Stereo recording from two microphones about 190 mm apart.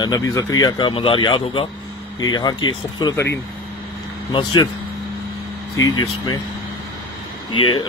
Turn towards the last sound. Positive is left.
turn(degrees=25)  # may be behind; listen again after turning